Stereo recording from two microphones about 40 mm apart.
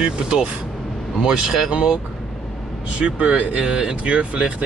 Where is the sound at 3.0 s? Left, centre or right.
Right.